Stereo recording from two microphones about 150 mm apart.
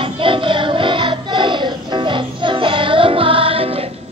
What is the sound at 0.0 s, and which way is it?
Music, 35° right (ahead or behind).